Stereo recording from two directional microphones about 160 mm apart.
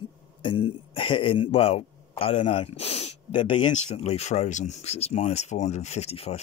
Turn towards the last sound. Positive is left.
turn(degrees=40)  # may be behind; listen again after turning